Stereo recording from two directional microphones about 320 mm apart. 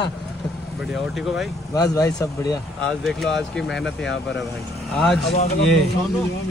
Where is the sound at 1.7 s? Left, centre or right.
Centre.